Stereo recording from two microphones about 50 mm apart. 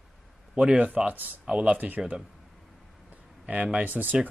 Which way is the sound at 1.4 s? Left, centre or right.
Centre.